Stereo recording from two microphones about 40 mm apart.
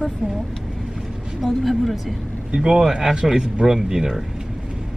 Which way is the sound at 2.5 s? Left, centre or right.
Centre.